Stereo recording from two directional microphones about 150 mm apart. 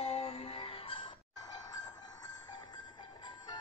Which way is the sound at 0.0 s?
40° left (ahead or behind).